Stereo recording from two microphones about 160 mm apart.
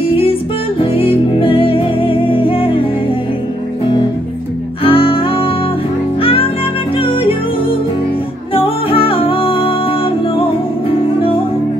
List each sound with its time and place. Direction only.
0.1 s music: 35° left (ahead or behind)
4.8 s music: 35° left (ahead or behind)
7.0 s music: 35° left (ahead or behind)
8.5 s music: 35° left (ahead or behind)